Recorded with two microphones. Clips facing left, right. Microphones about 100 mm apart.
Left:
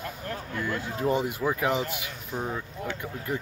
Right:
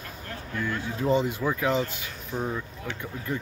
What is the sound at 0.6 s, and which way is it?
Speech, 10° left (ahead or behind).